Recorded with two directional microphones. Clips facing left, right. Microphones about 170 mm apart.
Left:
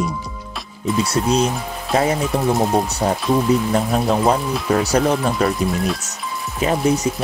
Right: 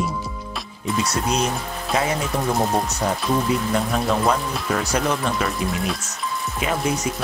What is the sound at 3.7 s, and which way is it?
Speech, 35° left (ahead or behind).